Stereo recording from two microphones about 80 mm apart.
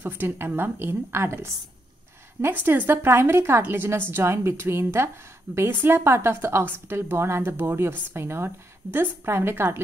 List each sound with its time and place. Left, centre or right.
0.0 s a woman's voice: right
2.6 s a woman's voice: right